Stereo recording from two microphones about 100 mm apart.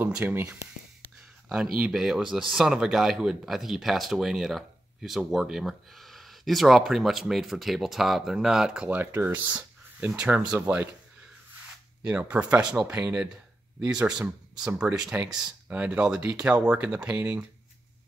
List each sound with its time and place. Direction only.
0.0 s speech: 20° right (ahead or behind)
1.5 s speech: 5° right (ahead or behind)
12.0 s speech: 10° right (ahead or behind)